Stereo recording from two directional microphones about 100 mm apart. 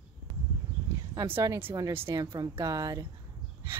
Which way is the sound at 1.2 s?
30° right (ahead or behind).